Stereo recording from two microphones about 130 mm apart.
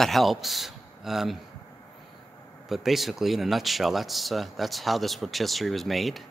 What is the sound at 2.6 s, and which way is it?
Speech, centre (ahead or behind).